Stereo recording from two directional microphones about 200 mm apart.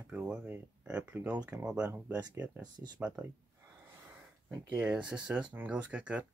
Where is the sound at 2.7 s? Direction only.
20° right (ahead or behind).